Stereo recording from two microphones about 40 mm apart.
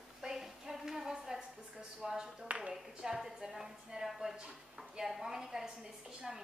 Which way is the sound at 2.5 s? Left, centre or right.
Right.